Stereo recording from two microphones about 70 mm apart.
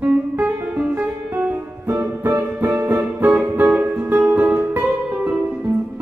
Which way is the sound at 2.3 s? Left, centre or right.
Right.